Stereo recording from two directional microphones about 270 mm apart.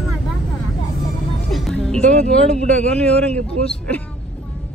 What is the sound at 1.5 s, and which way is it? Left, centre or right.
Music, centre.